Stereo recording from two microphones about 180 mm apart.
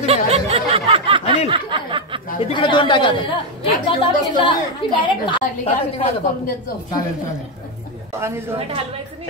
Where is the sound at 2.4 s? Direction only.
25° left (ahead or behind).